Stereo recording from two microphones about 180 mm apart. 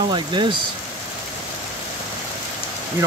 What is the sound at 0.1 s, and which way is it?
Speech, 25° right (ahead or behind).